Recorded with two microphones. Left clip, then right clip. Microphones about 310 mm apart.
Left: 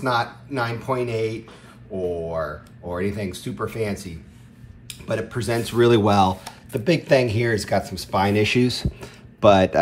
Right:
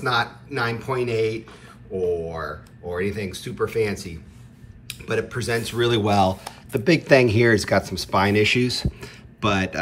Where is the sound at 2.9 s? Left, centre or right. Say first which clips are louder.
Even; centre.